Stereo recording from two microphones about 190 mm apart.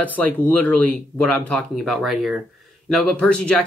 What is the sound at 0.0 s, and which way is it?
Speech, 10° left (ahead or behind).